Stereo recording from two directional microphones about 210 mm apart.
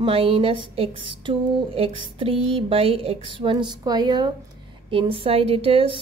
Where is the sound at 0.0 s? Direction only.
25° right (ahead or behind).